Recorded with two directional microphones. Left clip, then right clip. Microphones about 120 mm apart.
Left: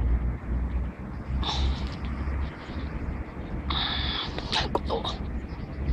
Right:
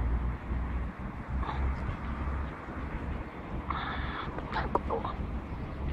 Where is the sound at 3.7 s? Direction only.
50° left (ahead or behind).